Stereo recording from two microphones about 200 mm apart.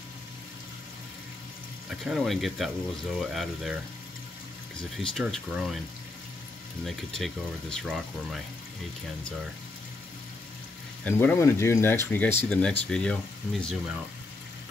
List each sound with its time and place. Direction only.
2.0 s speech: centre (ahead or behind)
4.9 s speech: centre (ahead or behind)
6.8 s speech: centre (ahead or behind)
11.1 s speech: 10° left (ahead or behind)